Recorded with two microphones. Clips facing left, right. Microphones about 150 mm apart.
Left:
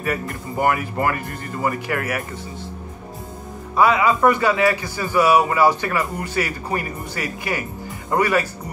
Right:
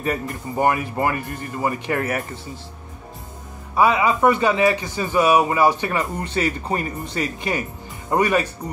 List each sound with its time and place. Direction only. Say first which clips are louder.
0.0 s a man's voice: even; 25° right (ahead or behind)
3.7 s a man's voice: left 1 dB; 15° right (ahead or behind)